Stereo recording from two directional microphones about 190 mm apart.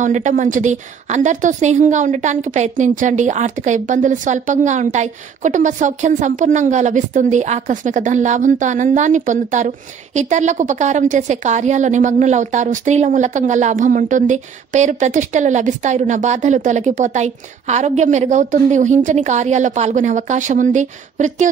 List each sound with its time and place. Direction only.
0.0 s a woman's voice: 40° right (ahead or behind)